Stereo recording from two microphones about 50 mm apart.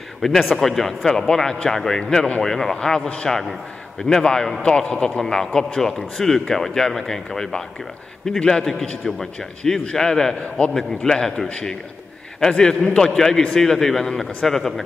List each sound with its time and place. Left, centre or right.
0.2 s a man's voice: centre